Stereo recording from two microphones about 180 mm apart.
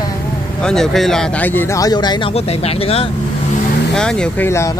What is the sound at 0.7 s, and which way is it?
Speech, centre (ahead or behind).